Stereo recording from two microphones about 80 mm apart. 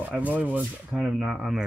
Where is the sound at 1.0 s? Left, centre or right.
Centre.